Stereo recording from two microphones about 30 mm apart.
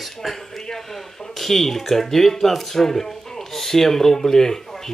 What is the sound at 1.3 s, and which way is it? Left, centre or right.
Speech, centre.